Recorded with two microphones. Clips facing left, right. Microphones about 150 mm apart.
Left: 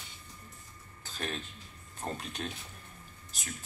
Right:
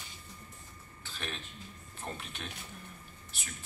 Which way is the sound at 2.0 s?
40° left (ahead or behind).